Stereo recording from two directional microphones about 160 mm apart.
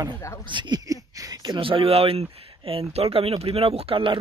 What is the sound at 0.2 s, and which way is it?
Speech, 15° left (ahead or behind).